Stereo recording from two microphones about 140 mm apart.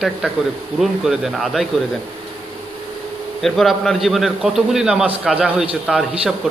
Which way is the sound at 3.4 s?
Centre (ahead or behind).